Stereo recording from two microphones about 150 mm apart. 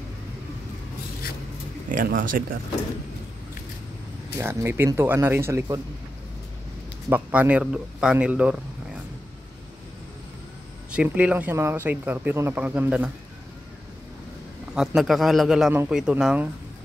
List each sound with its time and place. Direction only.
1.9 s speech: 65° right (ahead or behind)
4.4 s speech: 15° right (ahead or behind)
7.1 s speech: 15° right (ahead or behind)
10.9 s speech: 10° right (ahead or behind)
14.7 s a man's voice: 5° right (ahead or behind)